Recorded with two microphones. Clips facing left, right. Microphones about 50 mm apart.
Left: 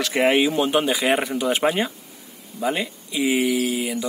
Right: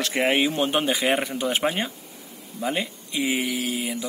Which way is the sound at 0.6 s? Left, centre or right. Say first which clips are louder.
Left 3 dB; centre.